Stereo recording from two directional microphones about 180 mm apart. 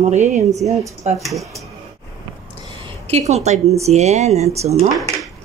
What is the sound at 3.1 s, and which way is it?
A woman's voice, 35° right (ahead or behind).